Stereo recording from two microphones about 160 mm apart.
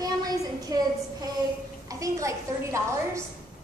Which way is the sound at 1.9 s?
20° right (ahead or behind).